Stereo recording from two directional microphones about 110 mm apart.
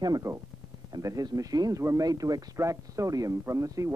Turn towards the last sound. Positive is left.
turn(degrees=-30)  # may be behind; listen again after turning